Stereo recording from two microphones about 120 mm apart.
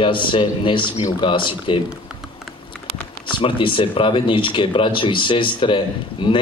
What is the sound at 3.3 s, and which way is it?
A man's voice, 45° left (ahead or behind).